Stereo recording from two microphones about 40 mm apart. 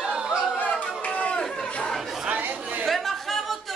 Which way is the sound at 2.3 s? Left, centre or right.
Right.